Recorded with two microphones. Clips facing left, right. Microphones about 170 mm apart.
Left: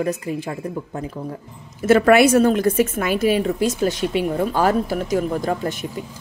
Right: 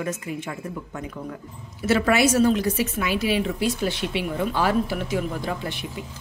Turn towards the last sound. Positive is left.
turn(degrees=40)  # may be behind; listen again after turning